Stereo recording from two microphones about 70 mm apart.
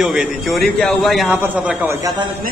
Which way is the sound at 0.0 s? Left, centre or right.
Centre.